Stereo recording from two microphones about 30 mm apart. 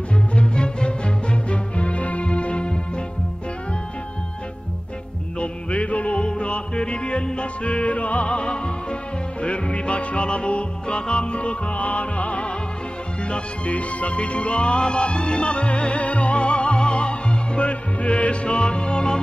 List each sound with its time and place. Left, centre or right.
0.3 s music: left
5.4 s music: left
13.7 s music: left